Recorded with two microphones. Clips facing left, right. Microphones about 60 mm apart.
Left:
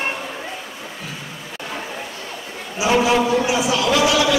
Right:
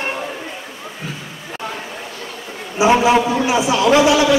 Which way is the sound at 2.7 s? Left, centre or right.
Right.